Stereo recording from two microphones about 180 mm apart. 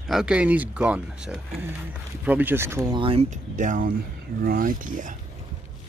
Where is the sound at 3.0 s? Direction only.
30° right (ahead or behind); by 5.1 s 50° right (ahead or behind).